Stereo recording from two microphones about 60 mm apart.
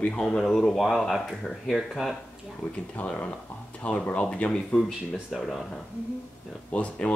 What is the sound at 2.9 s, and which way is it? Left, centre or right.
Speech, left.